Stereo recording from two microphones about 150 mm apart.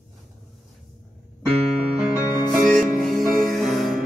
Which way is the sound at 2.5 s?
Centre (ahead or behind).